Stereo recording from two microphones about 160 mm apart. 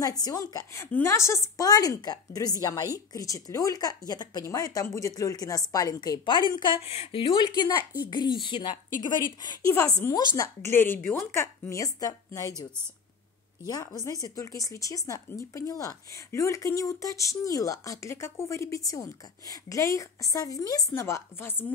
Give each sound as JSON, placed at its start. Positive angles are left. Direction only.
{"t": 0.0, "sound": "speech", "side_deg": 20}
{"t": 9.8, "sound": "a woman's voice", "side_deg": 15}
{"t": 13.7, "sound": "speech", "side_deg": 25}